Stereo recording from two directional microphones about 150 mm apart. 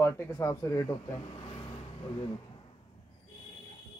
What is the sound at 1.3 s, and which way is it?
Vehicle, 35° left (ahead or behind).